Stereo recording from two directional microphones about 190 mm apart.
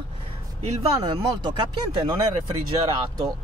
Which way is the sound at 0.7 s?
35° right (ahead or behind).